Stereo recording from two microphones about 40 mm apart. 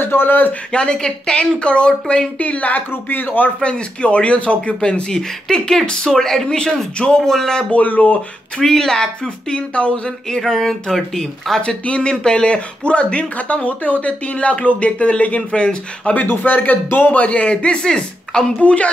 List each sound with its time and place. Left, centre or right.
0.0 s speech: left
0.7 s speech: left
2.3 s speech: left
2.9 s speech: left
3.6 s speech: left
7.2 s speech: centre
7.7 s speech: left
8.7 s speech: centre
9.6 s speech: left
10.4 s speech: centre
11.6 s speech: left
16.3 s speech: left
17.1 s speech: left; by 18.5 s centre
18.6 s speech: left